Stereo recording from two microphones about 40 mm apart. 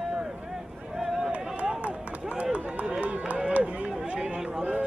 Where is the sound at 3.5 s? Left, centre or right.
Right.